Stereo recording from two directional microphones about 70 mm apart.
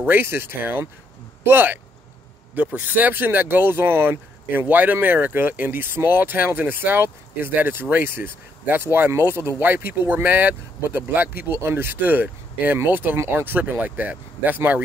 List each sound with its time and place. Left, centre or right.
0.0 s speech: right